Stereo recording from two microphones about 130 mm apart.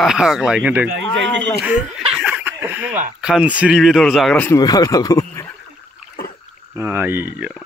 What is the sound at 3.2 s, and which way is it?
Speech, 5° right (ahead or behind).